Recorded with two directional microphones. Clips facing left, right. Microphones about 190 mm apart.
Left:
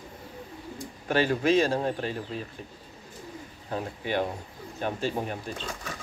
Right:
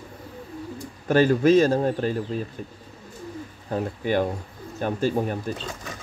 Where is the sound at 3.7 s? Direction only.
45° right (ahead or behind).